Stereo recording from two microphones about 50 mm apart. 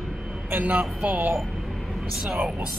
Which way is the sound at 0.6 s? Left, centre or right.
Right.